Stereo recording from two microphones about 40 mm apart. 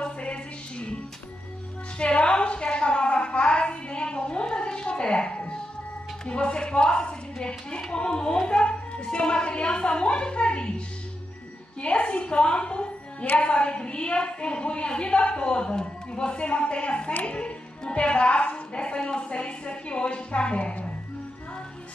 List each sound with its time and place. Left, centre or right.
0.0 s music: left
2.0 s a sound: left
11.8 s a woman's voice: left